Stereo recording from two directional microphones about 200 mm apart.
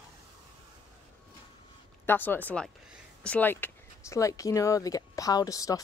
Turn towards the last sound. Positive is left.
turn(degrees=15)  # may be behind; listen again after turning